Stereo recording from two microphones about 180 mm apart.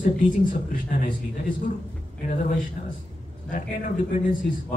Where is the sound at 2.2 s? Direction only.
45° left (ahead or behind).